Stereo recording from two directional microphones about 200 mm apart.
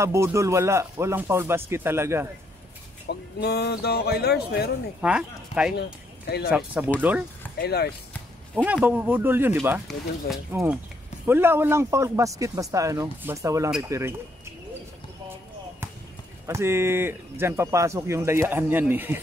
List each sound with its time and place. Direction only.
0.0 s speech: 15° right (ahead or behind)
3.1 s speech: 55° left (ahead or behind)
5.0 s speech: 5° right (ahead or behind)
6.2 s speech: 55° left (ahead or behind)
6.5 s speech: 5° right (ahead or behind)
7.5 s speech: 55° left (ahead or behind)
8.6 s speech: 10° right (ahead or behind)
16.4 s speech: 15° right (ahead or behind)